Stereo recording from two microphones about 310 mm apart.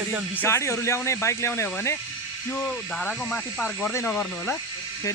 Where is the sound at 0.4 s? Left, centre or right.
Centre.